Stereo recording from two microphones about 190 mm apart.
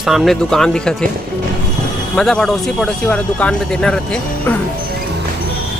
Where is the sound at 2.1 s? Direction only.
5° left (ahead or behind).